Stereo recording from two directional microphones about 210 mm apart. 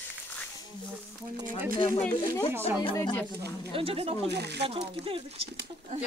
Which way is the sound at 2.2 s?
20° left (ahead or behind).